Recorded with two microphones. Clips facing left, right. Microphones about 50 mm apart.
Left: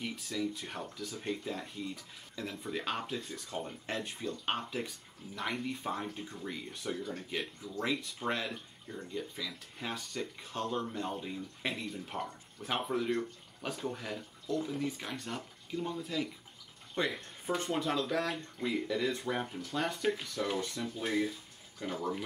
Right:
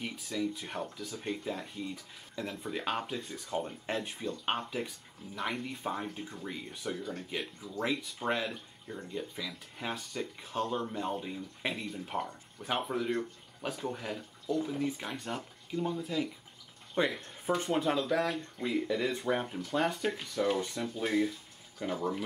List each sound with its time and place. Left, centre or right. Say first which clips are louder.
0.0 s speech: right 1 dB; centre
17.0 s speech: right 3 dB; centre
21.0 s a sound: right 3 dB; centre
21.8 s speech: right 3 dB; centre